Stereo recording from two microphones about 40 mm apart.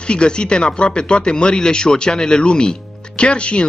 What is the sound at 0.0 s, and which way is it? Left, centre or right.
Speech, left.